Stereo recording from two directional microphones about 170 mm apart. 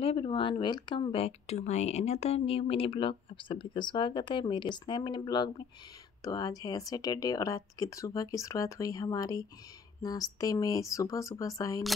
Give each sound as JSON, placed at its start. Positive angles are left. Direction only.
{"t": 0.0, "sound": "speech", "side_deg": 30}